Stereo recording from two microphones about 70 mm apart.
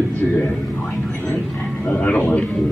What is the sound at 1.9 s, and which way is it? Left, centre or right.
Speech, centre.